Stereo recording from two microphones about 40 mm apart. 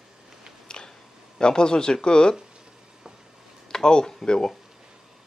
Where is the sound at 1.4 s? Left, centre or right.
Left.